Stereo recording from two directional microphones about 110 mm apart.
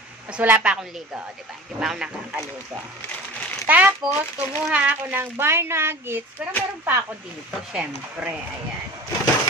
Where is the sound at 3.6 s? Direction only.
15° right (ahead or behind).